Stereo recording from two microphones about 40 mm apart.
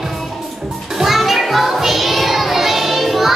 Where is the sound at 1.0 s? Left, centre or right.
Centre.